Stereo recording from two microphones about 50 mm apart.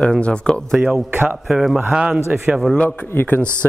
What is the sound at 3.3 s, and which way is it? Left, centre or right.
Speech, left.